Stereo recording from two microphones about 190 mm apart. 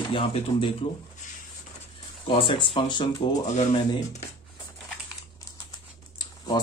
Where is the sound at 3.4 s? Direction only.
40° left (ahead or behind).